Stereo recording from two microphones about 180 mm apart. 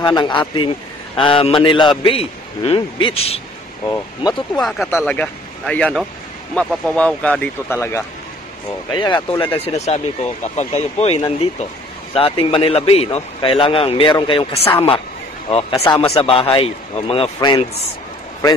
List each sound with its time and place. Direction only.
0.0 s a man's voice: 25° left (ahead or behind)
3.8 s a man's voice: 20° left (ahead or behind)
4.6 s speech: centre (ahead or behind)
8.9 s a man's voice: 25° left (ahead or behind)
16.1 s speech: 30° left (ahead or behind)